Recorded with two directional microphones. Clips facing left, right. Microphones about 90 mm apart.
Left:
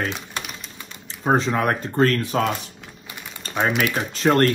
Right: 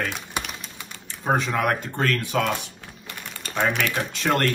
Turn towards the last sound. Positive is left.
turn(degrees=40)  # may be behind; listen again after turning